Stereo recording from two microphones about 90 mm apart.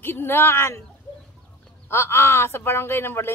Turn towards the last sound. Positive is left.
turn(degrees=25)  # may be behind; listen again after turning